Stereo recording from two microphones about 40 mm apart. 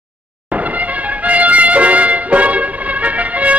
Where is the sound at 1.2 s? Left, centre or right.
Right.